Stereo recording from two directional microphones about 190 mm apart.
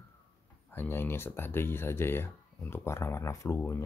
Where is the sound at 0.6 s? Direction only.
10° left (ahead or behind).